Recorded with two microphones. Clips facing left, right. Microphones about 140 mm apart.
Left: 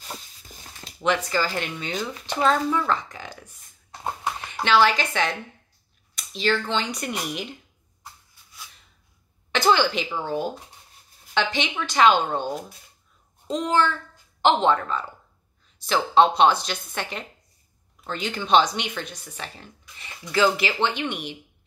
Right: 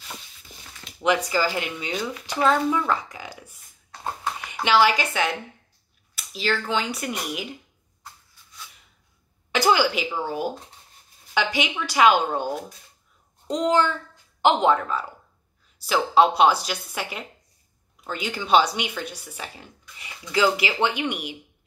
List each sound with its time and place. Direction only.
0.7 s a sound: 35° left (ahead or behind)
1.0 s speech: 10° right (ahead or behind)
4.6 s speech: 10° right (ahead or behind)
9.5 s speech: 10° right (ahead or behind)